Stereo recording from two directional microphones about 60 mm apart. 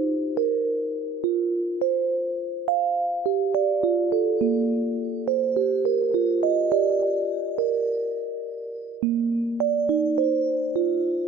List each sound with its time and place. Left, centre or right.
4.5 s music: right
6.7 s music: right
10.0 s music: centre